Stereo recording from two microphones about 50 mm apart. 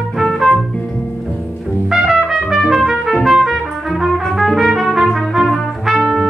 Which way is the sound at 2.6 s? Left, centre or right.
Centre.